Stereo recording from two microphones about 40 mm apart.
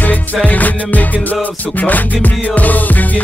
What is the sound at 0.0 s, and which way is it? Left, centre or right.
Music, left.